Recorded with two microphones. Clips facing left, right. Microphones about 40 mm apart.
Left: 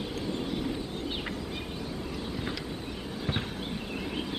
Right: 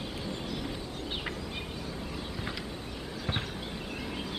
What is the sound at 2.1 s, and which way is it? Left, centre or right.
Vehicle, centre.